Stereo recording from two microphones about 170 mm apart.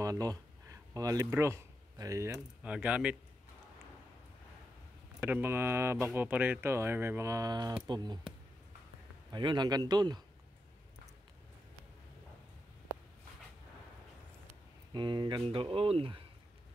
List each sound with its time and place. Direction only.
0.0 s speech: 20° right (ahead or behind)
2.6 s speech: 5° right (ahead or behind)
5.2 s speech: 15° right (ahead or behind)
9.3 s speech: 25° right (ahead or behind)
15.0 s speech: 25° right (ahead or behind)